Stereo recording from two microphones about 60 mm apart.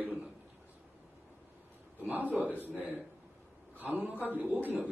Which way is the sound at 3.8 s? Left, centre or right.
Right.